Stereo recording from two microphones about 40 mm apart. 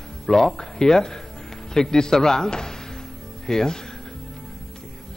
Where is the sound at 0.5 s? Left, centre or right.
Centre.